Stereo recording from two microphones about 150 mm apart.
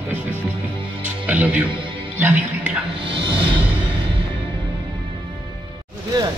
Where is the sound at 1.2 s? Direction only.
10° right (ahead or behind).